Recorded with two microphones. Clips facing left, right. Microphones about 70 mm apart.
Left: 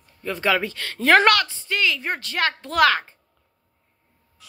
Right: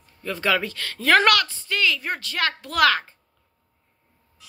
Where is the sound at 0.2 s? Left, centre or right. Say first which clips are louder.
Left 1 dB; left.